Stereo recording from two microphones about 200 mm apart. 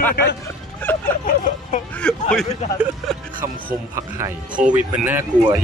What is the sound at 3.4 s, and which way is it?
Speech, 15° right (ahead or behind).